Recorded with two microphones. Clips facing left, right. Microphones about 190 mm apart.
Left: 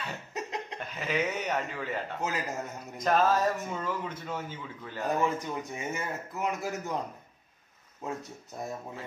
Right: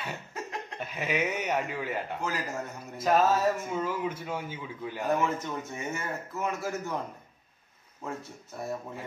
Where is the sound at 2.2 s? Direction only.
20° left (ahead or behind).